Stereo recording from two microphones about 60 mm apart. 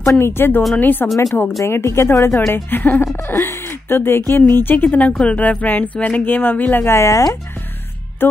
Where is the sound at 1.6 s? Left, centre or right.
Left.